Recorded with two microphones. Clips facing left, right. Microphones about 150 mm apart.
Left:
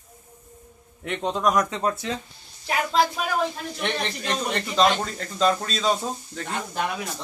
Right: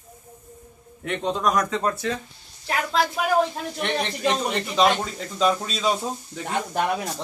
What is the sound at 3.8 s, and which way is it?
Speech, 5° right (ahead or behind).